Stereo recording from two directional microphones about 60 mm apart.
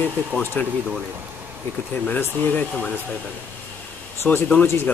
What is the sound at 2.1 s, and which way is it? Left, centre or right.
Speech, left.